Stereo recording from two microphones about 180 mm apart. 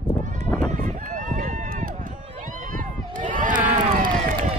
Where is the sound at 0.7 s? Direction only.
45° right (ahead or behind).